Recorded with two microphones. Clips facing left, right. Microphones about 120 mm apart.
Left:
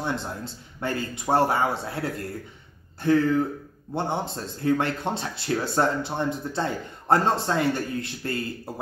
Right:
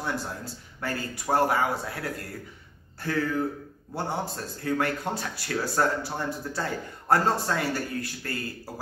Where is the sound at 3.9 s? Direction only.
25° left (ahead or behind).